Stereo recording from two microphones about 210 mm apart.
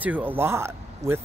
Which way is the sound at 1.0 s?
35° right (ahead or behind).